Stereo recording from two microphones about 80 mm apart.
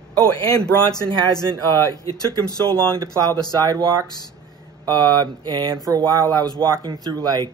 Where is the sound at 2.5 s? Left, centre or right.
Right.